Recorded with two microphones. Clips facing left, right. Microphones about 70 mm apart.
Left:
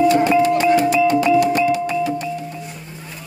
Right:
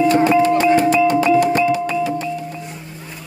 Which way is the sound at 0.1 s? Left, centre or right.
Right.